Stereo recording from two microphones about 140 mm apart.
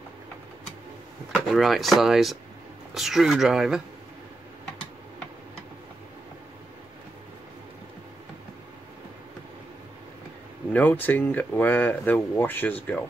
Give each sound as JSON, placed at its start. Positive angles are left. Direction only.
{"t": 1.3, "sound": "speech", "side_deg": 0}
{"t": 10.7, "sound": "speech", "side_deg": 10}